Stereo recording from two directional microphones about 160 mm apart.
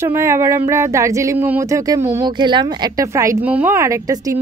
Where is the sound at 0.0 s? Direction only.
15° right (ahead or behind).